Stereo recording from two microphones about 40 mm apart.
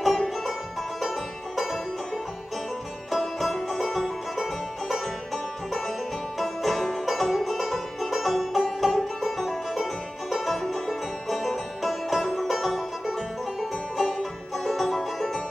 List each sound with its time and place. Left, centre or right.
0.0 s music: centre
3.1 s music: centre
14.0 s music: centre
14.7 s music: centre